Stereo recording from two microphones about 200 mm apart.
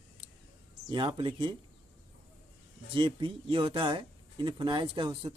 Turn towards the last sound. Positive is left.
turn(degrees=-25)  # may be behind; listen again after turning